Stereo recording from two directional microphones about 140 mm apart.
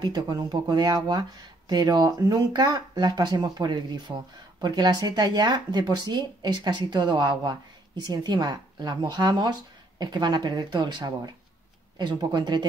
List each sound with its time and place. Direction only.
0.0 s speech: 30° right (ahead or behind)